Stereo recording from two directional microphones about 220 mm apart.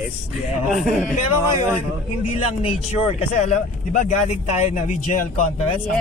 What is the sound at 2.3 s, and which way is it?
Speech, 25° left (ahead or behind).